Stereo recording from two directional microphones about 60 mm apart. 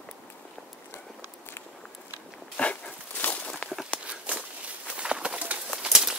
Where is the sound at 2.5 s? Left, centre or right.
Left.